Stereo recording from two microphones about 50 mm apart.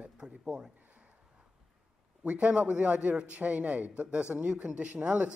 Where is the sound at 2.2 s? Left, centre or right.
Right.